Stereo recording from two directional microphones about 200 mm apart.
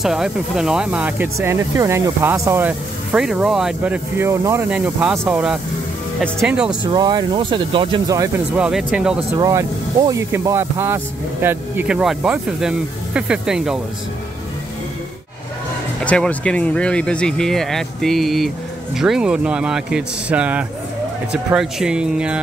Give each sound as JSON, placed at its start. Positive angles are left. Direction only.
{"t": 0.0, "sound": "speech", "side_deg": 0}
{"t": 6.8, "sound": "speech", "side_deg": -20}
{"t": 8.5, "sound": "speech", "side_deg": -5}
{"t": 9.4, "sound": "speech", "side_deg": -15}
{"t": 16.0, "sound": "speech", "side_deg": 5}